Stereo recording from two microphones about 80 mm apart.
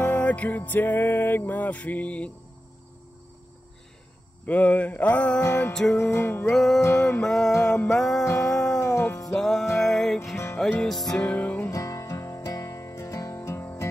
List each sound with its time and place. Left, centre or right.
0.0 s music: centre
4.5 s music: centre
5.4 s music: left
5.7 s music: centre
5.9 s music: left
6.5 s music: centre
6.8 s music: left
7.2 s music: centre
8.7 s music: left
9.3 s music: centre
10.3 s music: left
10.7 s music: centre
11.2 s music: centre
11.7 s music: left